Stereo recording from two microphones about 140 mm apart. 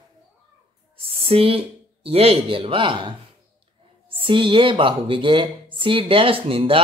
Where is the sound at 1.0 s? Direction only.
45° right (ahead or behind).